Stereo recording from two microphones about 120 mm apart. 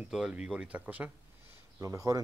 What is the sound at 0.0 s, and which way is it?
Speech, 10° right (ahead or behind).